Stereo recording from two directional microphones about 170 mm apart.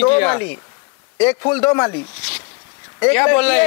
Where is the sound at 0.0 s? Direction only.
10° left (ahead or behind).